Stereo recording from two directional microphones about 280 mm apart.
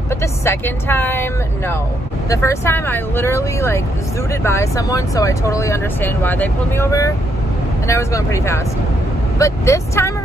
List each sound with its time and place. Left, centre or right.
0.1 s speech: centre